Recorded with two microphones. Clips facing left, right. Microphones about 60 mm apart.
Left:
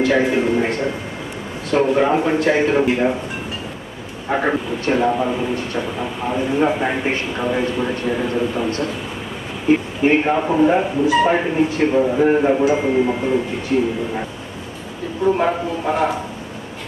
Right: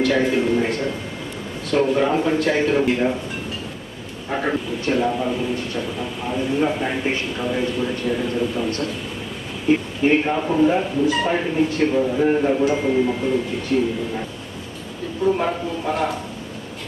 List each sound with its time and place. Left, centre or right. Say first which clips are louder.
0.0 s speech: left 2 dB; centre
4.3 s speech: left 4 dB; left
12.6 s speech: left 3 dB; centre
13.0 s speech: left 2 dB; left
15.3 s speech: left 4 dB; left